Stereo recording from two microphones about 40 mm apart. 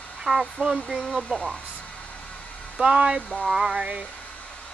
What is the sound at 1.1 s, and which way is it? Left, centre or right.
Speech, left.